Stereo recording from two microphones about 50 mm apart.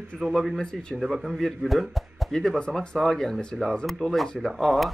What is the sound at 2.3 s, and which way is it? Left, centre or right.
A man's voice, centre.